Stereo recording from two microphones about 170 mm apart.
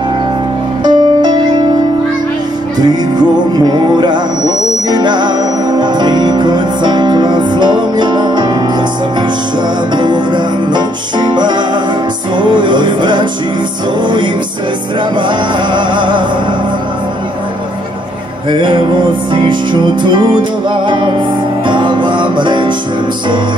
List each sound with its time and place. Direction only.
0.8 s music: 25° right (ahead or behind)
2.8 s music: 25° right (ahead or behind)
9.9 s music: 25° right (ahead or behind)
15.1 s music: 25° right (ahead or behind)
18.5 s music: 30° right (ahead or behind)